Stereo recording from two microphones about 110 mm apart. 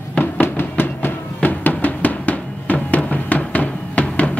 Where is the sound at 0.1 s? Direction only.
15° left (ahead or behind).